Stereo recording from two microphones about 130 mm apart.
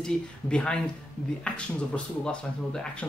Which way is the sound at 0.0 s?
5° left (ahead or behind).